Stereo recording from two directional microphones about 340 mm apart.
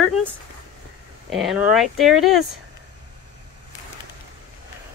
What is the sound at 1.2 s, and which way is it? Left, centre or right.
Speech, centre.